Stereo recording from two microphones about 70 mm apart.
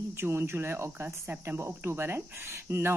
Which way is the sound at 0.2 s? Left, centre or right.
Right.